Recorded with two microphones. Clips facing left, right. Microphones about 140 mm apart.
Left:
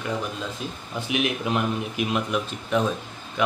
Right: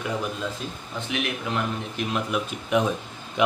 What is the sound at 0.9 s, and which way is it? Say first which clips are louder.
Speech: left 4 dB; 15° left (ahead or behind).